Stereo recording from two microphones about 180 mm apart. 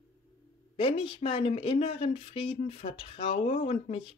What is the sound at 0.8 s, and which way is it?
Speech, 30° left (ahead or behind).